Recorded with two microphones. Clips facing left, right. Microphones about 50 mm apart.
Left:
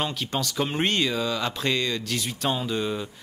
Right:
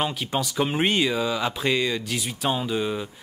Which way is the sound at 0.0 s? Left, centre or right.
Centre.